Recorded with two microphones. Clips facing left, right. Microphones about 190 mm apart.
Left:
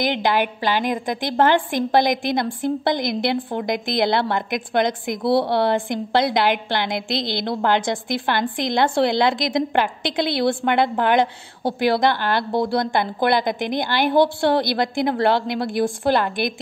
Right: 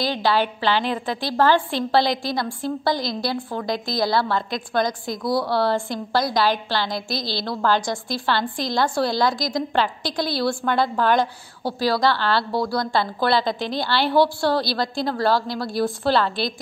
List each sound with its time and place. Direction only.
0.0 s a woman's voice: 20° left (ahead or behind)